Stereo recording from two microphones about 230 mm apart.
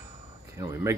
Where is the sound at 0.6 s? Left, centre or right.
Centre.